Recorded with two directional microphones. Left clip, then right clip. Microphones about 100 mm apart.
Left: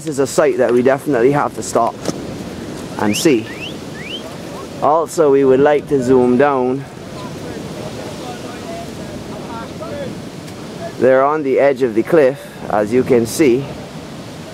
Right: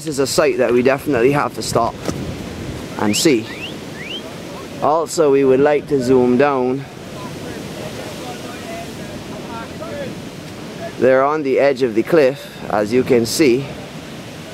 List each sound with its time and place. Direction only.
0.1 s speech: 10° right (ahead or behind)
0.5 s speech: 25° right (ahead or behind)
1.8 s speech: 10° right (ahead or behind)
4.8 s speech: 20° right (ahead or behind)
11.0 s speech: 30° right (ahead or behind)